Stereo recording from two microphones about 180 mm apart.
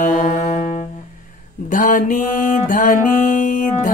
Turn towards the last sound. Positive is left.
turn(degrees=45)  # may be behind; listen again after turning